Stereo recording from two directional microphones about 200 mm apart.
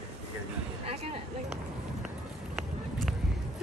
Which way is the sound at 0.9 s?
30° right (ahead or behind).